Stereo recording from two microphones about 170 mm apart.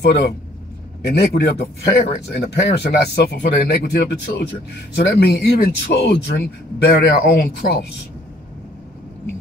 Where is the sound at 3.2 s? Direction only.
70° left (ahead or behind).